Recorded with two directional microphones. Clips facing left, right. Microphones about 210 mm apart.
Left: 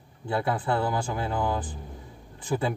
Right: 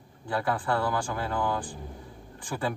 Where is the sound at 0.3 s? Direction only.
20° left (ahead or behind).